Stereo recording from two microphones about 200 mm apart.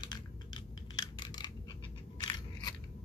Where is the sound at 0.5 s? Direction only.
20° left (ahead or behind).